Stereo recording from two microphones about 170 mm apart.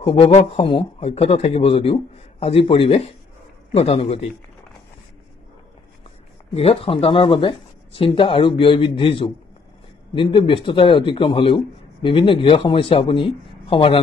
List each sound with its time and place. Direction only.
0.0 s speech: 35° left (ahead or behind)
6.5 s speech: 35° left (ahead or behind)